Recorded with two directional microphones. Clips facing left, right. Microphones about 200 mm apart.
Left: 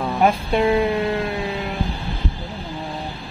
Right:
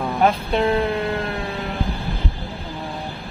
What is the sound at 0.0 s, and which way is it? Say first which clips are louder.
Speech: even; 10° left (ahead or behind).